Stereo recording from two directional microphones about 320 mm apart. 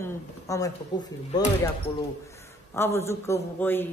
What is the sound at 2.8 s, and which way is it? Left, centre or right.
A woman's voice, centre.